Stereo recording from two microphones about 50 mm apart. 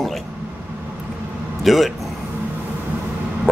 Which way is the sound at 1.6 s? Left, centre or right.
Centre.